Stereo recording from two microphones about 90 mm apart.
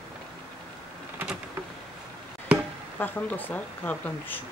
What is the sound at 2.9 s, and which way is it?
Speech, 20° left (ahead or behind).